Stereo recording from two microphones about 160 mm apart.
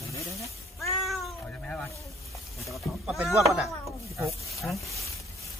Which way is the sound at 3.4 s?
Centre (ahead or behind).